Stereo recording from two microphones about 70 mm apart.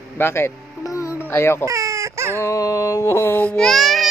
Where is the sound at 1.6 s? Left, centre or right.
Right.